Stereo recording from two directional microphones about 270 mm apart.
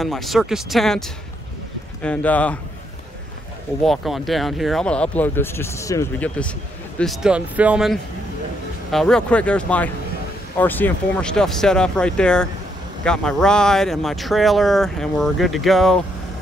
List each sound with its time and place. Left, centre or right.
0.0 s speech: centre
3.8 s speech: centre